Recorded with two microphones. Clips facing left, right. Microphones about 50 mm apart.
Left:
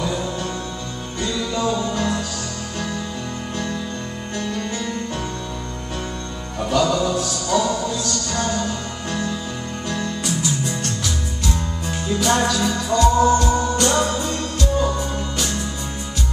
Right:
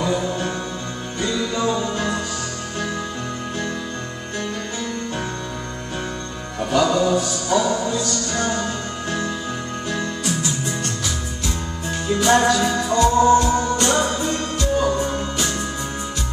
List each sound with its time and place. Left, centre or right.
1.2 s music: centre
6.7 s music: centre
12.1 s music: centre
13.1 s music: centre
13.4 s music: centre